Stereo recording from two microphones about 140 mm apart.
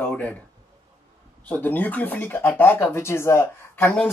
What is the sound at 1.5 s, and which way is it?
Speech, 15° left (ahead or behind).